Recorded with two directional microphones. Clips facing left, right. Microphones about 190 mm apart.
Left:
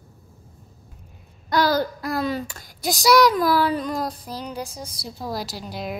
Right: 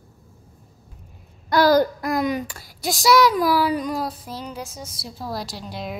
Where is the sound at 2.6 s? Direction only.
Centre (ahead or behind).